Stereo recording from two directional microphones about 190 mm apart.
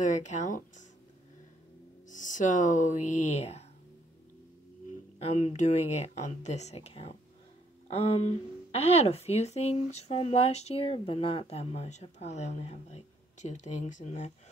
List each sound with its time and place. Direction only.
0.0 s speech: 40° left (ahead or behind)
2.0 s speech: 40° left (ahead or behind)
5.2 s speech: 35° left (ahead or behind)